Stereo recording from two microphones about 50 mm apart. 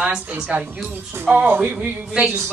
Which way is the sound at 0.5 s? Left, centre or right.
Right.